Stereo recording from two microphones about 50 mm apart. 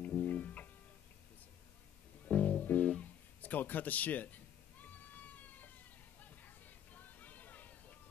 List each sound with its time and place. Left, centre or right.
0.0 s music: left
2.2 s music: left
3.0 s cat: left
6.2 s a sound: left